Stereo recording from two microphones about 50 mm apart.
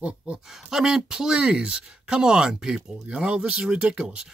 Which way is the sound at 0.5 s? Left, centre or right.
Centre.